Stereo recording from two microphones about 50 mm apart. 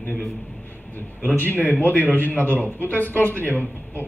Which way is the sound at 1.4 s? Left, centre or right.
Left.